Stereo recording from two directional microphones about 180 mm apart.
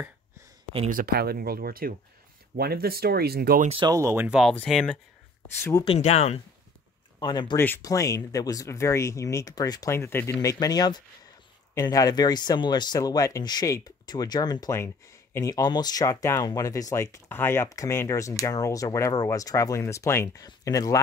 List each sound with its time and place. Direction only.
0.9 s speech: 60° right (ahead or behind)
3.6 s speech: 30° right (ahead or behind)
3.9 s speech: 15° right (ahead or behind); by 4.9 s 5° left (ahead or behind)
5.6 s speech: 15° left (ahead or behind)
5.9 s speech: 35° left (ahead or behind)
7.2 s speech: 25° left (ahead or behind)